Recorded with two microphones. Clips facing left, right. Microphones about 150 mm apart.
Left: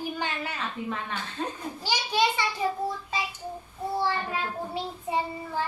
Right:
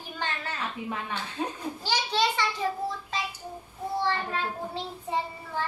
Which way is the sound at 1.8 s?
10° left (ahead or behind).